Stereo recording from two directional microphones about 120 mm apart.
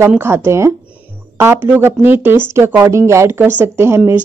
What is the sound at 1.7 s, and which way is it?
Speech, 15° right (ahead or behind).